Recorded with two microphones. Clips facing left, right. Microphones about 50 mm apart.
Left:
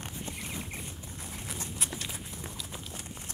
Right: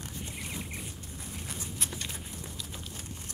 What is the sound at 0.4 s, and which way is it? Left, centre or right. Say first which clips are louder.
Rodents: even; centre.